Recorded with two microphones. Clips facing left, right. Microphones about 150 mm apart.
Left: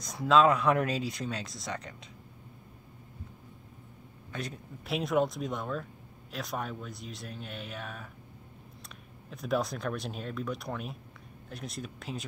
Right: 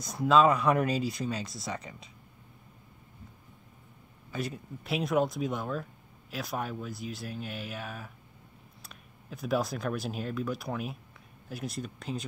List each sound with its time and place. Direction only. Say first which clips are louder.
0.0 s speech: right 1 dB; centre (ahead or behind)
4.3 s speech: right 4 dB; 5° right (ahead or behind)